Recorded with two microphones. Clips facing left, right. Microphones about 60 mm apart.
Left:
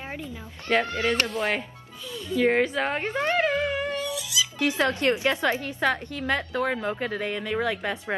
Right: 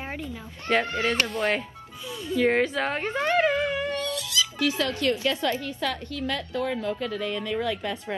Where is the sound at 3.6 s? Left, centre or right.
Left.